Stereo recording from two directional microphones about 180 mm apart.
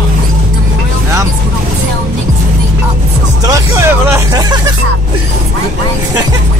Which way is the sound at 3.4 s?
15° right (ahead or behind).